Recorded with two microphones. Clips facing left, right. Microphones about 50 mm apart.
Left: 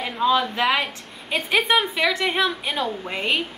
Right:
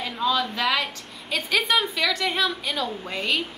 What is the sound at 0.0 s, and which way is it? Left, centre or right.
A woman's voice, left.